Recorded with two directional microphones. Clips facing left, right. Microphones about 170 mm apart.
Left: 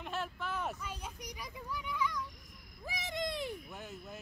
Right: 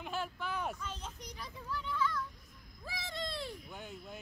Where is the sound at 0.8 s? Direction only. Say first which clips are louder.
Left 1 dB; 10° left (ahead or behind).